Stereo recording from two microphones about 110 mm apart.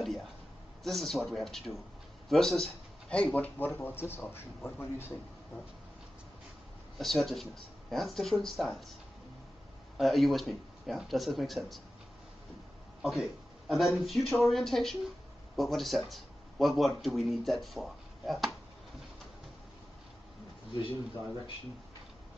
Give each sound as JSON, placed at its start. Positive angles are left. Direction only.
{"t": 0.8, "sound": "a man's voice", "side_deg": 0}
{"t": 7.0, "sound": "speech", "side_deg": 0}
{"t": 9.9, "sound": "speech", "side_deg": 0}
{"t": 13.0, "sound": "speech", "side_deg": -5}